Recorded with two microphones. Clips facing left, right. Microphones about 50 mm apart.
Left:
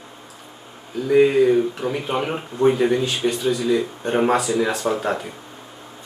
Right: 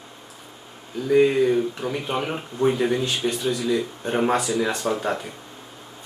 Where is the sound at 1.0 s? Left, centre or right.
Centre.